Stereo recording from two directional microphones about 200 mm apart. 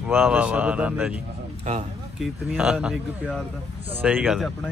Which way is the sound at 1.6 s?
35° right (ahead or behind).